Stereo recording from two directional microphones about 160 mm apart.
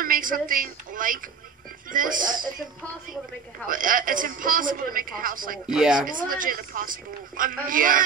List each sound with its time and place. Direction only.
0.0 s speech: 60° right (ahead or behind)
3.6 s speech: 60° right (ahead or behind)
5.7 s speech: 5° right (ahead or behind)
6.2 s speech: 60° right (ahead or behind)